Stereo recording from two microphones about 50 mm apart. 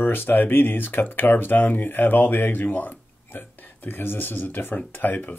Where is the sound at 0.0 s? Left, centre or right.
Left.